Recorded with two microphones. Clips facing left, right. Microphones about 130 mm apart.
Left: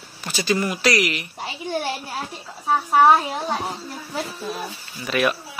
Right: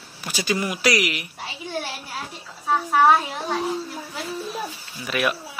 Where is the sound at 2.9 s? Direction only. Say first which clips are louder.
Left 2 dB; 30° left (ahead or behind).